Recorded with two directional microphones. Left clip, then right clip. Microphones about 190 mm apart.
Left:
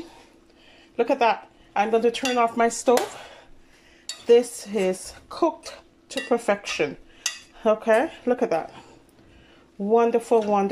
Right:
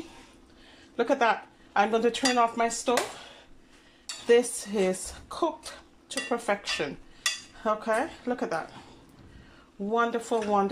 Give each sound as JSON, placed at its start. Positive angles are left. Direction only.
{"t": 0.9, "sound": "speech", "side_deg": 5}
{"t": 4.3, "sound": "speech", "side_deg": 5}
{"t": 9.8, "sound": "speech", "side_deg": 10}